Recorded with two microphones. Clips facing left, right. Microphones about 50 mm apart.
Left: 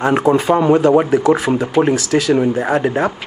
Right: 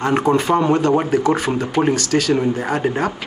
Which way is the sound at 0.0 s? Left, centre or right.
Centre.